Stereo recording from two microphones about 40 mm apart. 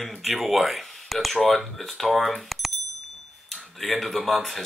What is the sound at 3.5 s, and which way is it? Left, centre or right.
Speech, centre.